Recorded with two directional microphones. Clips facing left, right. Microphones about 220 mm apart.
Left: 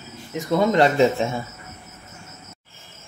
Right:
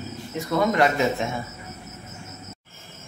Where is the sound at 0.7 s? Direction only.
30° left (ahead or behind).